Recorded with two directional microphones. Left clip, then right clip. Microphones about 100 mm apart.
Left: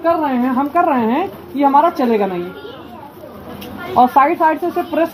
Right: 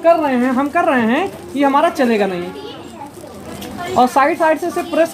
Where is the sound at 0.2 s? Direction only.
10° right (ahead or behind).